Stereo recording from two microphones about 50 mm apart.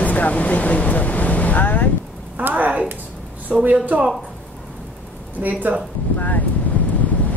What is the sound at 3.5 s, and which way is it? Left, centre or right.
Speech, centre.